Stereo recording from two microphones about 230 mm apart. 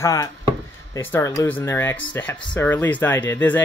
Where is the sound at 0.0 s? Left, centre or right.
Centre.